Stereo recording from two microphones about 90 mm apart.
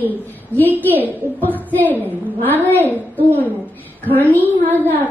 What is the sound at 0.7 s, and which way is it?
Speech, 20° right (ahead or behind).